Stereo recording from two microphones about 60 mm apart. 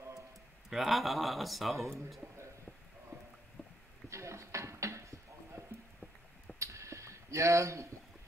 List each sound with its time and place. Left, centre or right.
0.7 s speech: centre
3.6 s rowboat: left
4.1 s a sound: right